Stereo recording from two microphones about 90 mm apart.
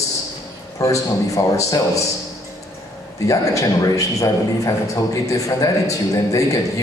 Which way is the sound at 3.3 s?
35° left (ahead or behind).